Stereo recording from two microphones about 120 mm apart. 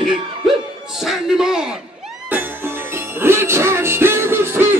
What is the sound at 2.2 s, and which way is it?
Music, 15° right (ahead or behind).